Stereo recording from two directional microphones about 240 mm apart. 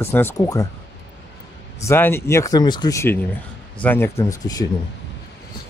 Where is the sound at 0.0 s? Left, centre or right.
Centre.